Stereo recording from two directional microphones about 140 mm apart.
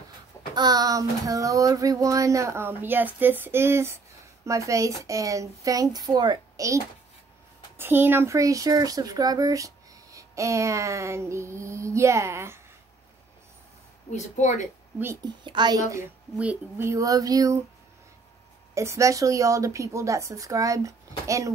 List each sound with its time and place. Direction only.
0.6 s child singing: 30° right (ahead or behind)
14.1 s speech: 55° left (ahead or behind)
15.2 s a woman's voice: 30° right (ahead or behind)
16.3 s child singing: 15° right (ahead or behind)
18.8 s child singing: 20° right (ahead or behind)